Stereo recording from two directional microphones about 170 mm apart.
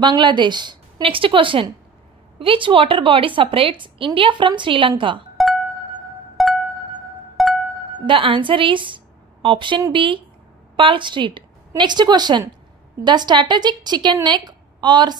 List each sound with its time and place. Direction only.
0.0 s a woman's voice: 25° right (ahead or behind)
6.3 s music: centre (ahead or behind)
8.1 s a woman's voice: 30° right (ahead or behind)